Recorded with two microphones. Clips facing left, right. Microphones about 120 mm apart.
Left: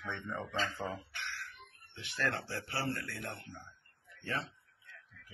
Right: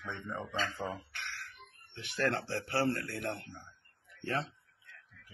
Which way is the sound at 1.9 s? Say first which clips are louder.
Right 4 dB; 70° right (ahead or behind).